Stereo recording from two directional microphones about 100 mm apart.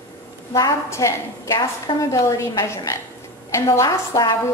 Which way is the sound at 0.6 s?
30° left (ahead or behind).